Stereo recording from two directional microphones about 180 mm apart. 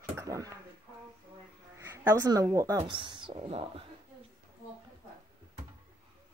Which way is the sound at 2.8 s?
30° right (ahead or behind).